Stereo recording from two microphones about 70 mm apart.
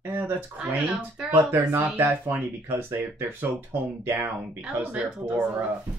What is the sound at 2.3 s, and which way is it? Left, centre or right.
Speech, right.